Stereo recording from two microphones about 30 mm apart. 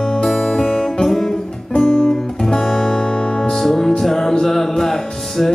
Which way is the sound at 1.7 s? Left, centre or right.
Left.